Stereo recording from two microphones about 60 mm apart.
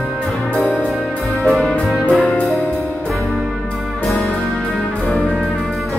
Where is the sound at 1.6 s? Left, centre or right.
Left.